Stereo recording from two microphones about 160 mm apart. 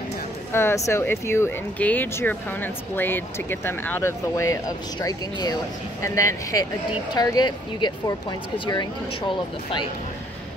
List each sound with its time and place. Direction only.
0.5 s speech: 15° left (ahead or behind)